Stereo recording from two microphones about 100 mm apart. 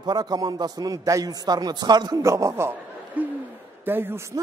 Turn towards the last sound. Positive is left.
turn(degrees=-30)  # may be behind; listen again after turning